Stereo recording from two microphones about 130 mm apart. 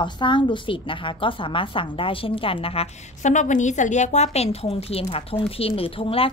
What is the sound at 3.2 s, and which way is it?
A woman's voice, 70° left (ahead or behind).